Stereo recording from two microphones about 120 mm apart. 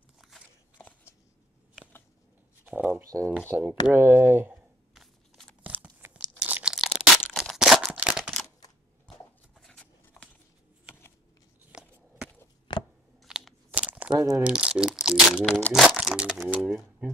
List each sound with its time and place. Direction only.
0.7 s shuffling cards: 15° left (ahead or behind)
2.7 s speech: 10° right (ahead or behind)
3.0 s speech: 25° right (ahead or behind)
4.9 s a sound: centre (ahead or behind)
5.7 s tearing: 15° right (ahead or behind)
7.3 s single-lens reflex camera: centre (ahead or behind)
9.6 s a sound: 5° left (ahead or behind)
12.7 s chewing: 40° left (ahead or behind)
13.2 s a sound: centre (ahead or behind)
14.1 s speech: 25° right (ahead or behind)
14.4 s speech: 10° right (ahead or behind)
15.3 s speech: 10° left (ahead or behind)